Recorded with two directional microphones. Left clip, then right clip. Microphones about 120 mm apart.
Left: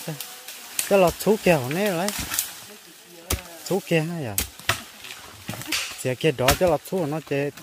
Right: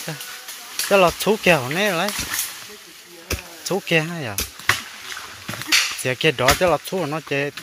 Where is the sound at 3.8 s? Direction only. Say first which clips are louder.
Right 5 dB; 25° left (ahead or behind).